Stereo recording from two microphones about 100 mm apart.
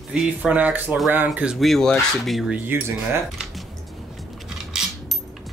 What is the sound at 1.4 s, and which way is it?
Speech, centre (ahead or behind).